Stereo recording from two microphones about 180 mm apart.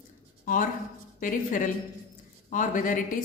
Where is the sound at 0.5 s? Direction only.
50° left (ahead or behind).